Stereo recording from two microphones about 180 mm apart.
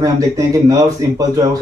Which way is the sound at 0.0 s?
20° right (ahead or behind).